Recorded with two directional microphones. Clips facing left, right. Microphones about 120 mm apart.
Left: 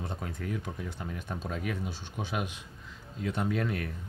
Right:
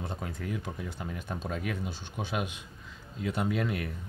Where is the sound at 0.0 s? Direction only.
Centre (ahead or behind).